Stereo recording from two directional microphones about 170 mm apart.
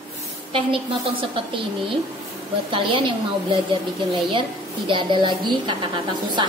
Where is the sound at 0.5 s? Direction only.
30° right (ahead or behind).